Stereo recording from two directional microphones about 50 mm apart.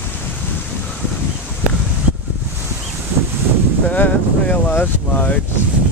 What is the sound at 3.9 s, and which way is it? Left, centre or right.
Boat, left.